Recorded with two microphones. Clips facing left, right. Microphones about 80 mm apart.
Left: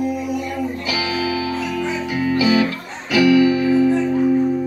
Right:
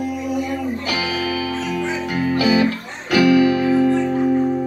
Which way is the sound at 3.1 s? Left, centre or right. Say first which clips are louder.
Even; right.